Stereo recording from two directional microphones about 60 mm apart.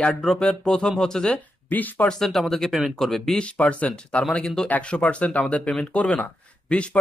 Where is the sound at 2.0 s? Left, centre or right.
Centre.